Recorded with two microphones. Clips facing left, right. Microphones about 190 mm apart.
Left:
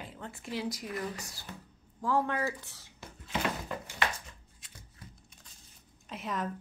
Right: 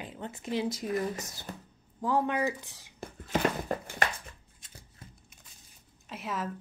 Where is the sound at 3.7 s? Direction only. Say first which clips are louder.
Right 6 dB; 45° right (ahead or behind).